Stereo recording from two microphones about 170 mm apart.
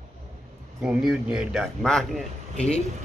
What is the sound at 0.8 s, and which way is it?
Speech, 5° right (ahead or behind).